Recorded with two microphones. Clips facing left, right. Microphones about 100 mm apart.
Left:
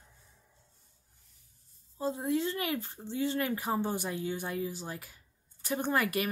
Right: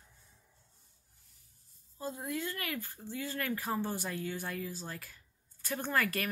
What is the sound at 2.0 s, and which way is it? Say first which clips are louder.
Speech: left 7 dB; 25° left (ahead or behind).